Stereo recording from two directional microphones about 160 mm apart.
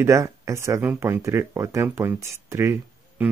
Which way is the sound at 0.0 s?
20° right (ahead or behind).